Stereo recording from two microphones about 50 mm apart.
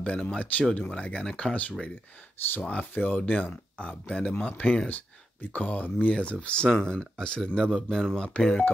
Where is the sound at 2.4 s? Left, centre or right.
Left.